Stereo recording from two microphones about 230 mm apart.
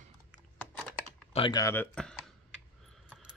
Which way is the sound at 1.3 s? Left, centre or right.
Centre.